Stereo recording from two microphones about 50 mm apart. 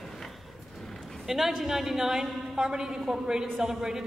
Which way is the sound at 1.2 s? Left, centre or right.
Centre.